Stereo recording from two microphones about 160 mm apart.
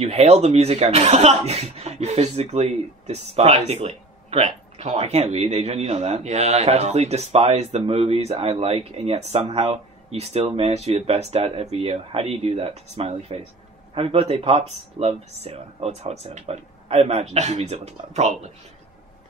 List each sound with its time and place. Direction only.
0.0 s speech: 40° right (ahead or behind)